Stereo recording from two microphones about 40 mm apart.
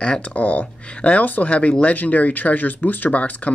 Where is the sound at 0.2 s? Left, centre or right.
Left.